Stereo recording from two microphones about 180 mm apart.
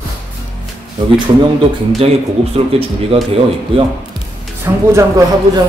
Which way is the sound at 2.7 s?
35° right (ahead or behind).